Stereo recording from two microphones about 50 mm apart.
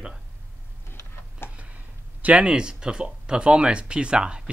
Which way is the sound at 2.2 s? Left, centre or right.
Right.